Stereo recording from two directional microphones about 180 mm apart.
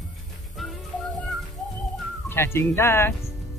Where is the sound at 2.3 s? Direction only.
15° left (ahead or behind).